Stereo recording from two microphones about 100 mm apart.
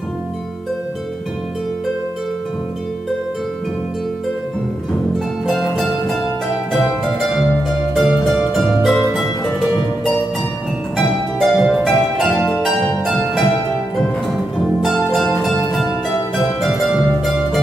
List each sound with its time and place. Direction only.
6.7 s music: centre (ahead or behind)
11.0 s harp: centre (ahead or behind)
13.0 s music: centre (ahead or behind)
14.8 s music: centre (ahead or behind)